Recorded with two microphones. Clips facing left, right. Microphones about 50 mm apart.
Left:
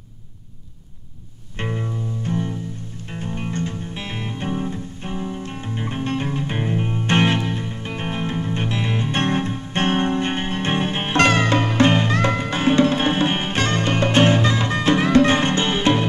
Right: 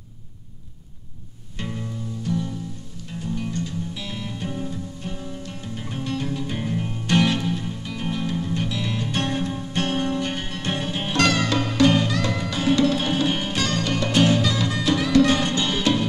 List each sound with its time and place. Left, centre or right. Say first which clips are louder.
1.6 s music: left 4 dB; left